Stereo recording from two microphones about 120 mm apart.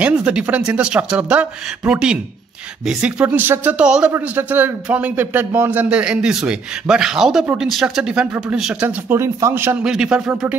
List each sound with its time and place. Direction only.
0.0 s a man's voice: 10° right (ahead or behind)
8.8 s a man's voice: 20° right (ahead or behind)
9.8 s a man's voice: 5° right (ahead or behind)